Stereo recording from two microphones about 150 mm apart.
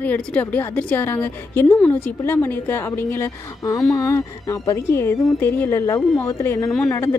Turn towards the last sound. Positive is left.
turn(degrees=20)  # may be behind; listen again after turning